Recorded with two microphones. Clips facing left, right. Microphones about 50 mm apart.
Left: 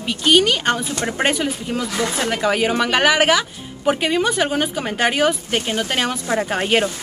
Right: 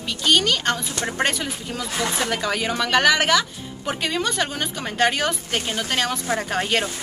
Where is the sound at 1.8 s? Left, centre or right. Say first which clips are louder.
Left 1 dB; left.